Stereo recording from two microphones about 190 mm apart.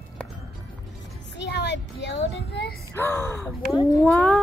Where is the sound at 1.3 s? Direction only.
65° left (ahead or behind).